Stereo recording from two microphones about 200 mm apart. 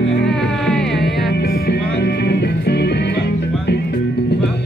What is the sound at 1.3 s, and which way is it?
Music, 55° left (ahead or behind).